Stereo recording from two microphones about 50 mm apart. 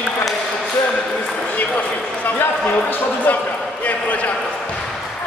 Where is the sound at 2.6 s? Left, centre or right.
Left.